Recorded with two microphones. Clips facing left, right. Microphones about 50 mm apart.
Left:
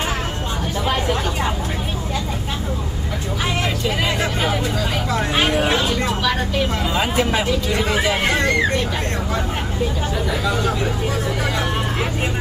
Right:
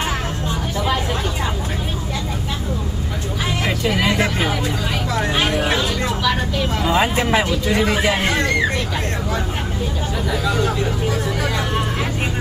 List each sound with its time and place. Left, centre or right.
0.8 s vehicle: centre
5.3 s a sound: centre
6.9 s speech: right